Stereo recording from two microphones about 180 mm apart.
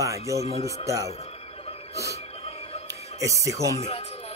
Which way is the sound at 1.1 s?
35° left (ahead or behind).